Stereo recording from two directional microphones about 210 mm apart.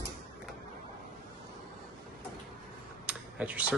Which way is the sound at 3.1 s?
5° right (ahead or behind).